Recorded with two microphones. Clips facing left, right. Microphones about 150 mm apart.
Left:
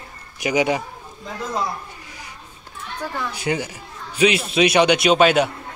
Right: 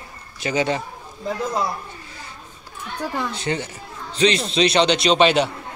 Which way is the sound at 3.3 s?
10° left (ahead or behind).